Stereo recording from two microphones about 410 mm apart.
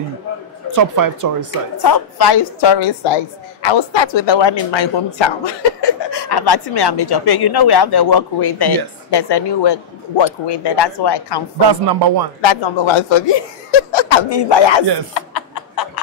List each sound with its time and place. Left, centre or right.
0.7 s speech: right
1.8 s a woman's voice: left
11.7 s speech: right
12.4 s speech: left
15.5 s a sound: left